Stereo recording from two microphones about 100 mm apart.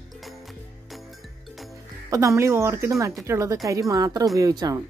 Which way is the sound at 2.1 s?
30° right (ahead or behind).